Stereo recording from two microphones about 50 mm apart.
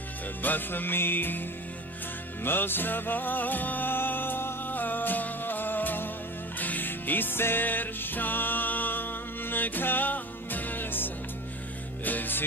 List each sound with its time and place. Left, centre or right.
0.4 s music: left
2.4 s music: left